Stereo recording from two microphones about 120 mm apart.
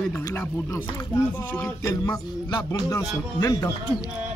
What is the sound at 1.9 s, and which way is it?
Speech, 35° left (ahead or behind).